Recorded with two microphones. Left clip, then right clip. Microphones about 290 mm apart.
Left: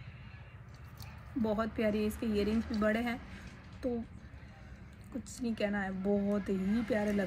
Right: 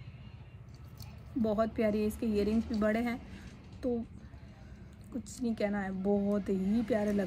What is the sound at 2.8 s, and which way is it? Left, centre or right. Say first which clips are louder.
Speech: even; centre.